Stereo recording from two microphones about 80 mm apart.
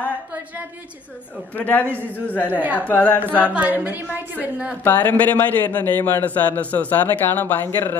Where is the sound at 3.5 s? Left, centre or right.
Centre.